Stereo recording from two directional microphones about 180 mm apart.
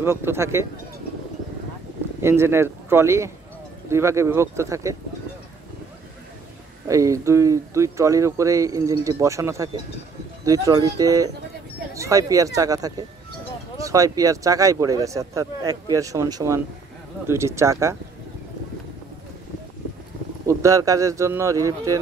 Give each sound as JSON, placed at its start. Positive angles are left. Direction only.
{"t": 0.0, "sound": "speech", "side_deg": -15}
{"t": 2.2, "sound": "speech", "side_deg": -15}
{"t": 6.9, "sound": "speech", "side_deg": -15}
{"t": 20.4, "sound": "speech", "side_deg": -15}